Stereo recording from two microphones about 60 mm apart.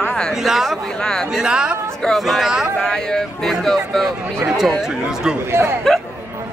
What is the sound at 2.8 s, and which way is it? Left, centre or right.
A man's voice, centre.